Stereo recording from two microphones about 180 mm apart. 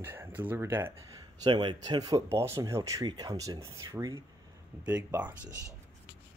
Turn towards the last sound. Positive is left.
turn(degrees=-10)  # may be behind; listen again after turning